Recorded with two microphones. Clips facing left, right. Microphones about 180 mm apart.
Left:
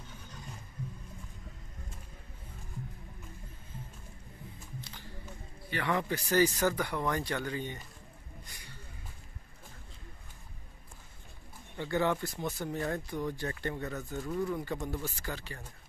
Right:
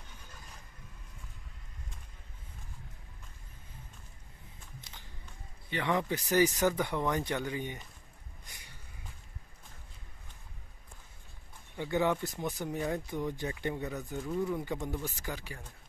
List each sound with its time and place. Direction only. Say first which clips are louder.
5.7 s speech: right 1 dB; 20° right (ahead or behind)
11.7 s speech: even; 15° right (ahead or behind)